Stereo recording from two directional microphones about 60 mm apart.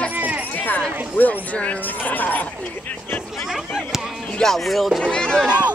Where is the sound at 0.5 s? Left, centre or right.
Left.